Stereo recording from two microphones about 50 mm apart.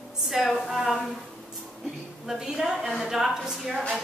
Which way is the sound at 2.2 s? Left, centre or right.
Centre.